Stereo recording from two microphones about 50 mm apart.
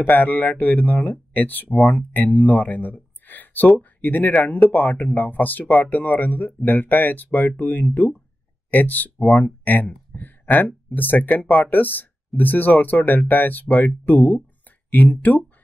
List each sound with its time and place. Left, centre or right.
0.0 s speech: left